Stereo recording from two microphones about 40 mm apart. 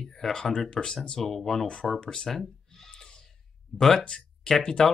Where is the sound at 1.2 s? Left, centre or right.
Centre.